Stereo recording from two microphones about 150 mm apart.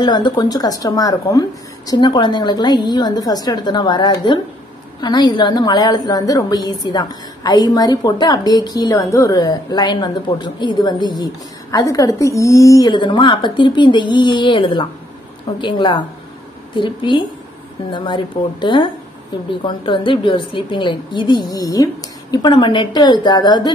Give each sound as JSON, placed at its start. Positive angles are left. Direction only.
{"t": 0.0, "sound": "a woman's voice", "side_deg": 30}